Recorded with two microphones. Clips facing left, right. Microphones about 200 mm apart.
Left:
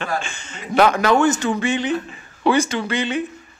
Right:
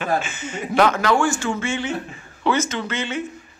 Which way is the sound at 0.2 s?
5° right (ahead or behind).